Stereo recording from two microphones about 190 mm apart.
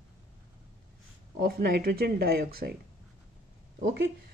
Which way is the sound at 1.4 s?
55° right (ahead or behind).